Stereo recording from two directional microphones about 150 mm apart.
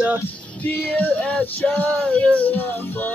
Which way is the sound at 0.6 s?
10° left (ahead or behind).